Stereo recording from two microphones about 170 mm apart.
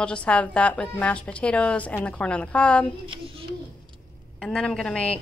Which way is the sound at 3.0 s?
30° right (ahead or behind).